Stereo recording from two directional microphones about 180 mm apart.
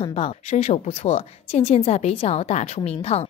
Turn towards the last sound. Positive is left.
turn(degrees=35)  # may be behind; listen again after turning